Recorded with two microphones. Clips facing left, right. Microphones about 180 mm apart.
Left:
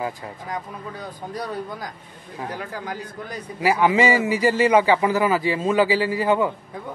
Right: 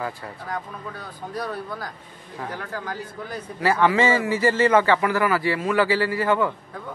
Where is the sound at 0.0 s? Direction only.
15° left (ahead or behind).